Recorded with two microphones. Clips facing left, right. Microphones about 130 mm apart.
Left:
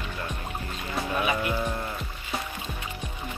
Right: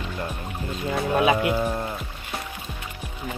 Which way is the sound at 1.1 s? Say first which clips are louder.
Right 7 dB; 80° right.